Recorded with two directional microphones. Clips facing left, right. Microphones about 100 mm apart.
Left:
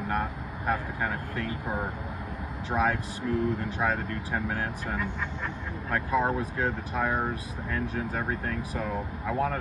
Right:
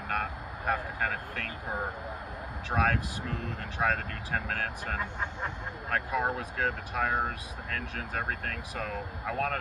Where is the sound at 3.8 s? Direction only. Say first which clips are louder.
Even; 10° left (ahead or behind).